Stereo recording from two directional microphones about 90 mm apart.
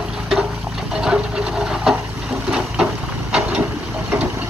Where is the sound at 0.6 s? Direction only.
5° right (ahead or behind).